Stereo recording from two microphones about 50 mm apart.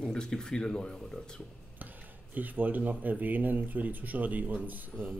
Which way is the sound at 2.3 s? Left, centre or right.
Right.